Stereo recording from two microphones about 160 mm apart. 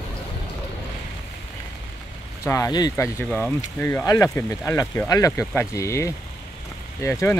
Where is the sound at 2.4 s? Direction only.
20° left (ahead or behind).